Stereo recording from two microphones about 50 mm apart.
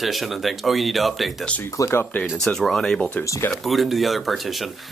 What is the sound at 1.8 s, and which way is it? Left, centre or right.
Speech, left.